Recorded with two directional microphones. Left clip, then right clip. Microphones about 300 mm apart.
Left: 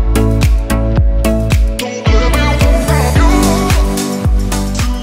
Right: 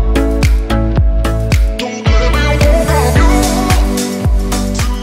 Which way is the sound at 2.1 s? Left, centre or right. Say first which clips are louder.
Left 1 dB; right.